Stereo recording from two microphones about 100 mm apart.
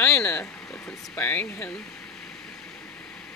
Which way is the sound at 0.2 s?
10° left (ahead or behind).